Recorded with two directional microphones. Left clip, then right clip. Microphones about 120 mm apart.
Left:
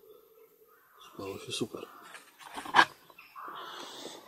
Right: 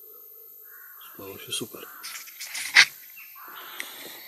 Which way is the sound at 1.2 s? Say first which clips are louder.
Left 1 dB; 30° right (ahead or behind).